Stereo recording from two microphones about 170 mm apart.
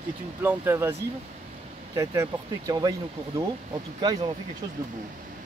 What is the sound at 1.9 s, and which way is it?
Speech, 15° right (ahead or behind).